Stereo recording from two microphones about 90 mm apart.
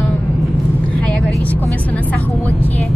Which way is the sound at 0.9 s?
15° left (ahead or behind).